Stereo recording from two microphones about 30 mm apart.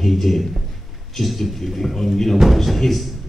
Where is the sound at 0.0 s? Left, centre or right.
Centre.